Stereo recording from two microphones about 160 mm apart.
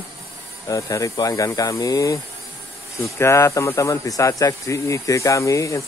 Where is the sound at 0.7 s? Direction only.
20° left (ahead or behind).